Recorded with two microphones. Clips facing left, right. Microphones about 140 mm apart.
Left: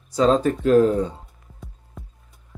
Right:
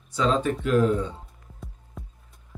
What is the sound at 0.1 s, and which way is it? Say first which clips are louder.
Speech: left 6 dB; 40° left (ahead or behind).